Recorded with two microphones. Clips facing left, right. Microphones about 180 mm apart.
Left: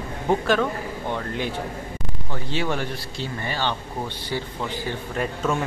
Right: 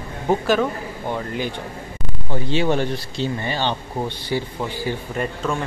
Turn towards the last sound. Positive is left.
turn(degrees=5)  # may be behind; listen again after turning